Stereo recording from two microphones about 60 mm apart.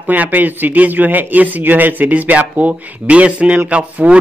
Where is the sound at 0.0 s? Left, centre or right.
Right.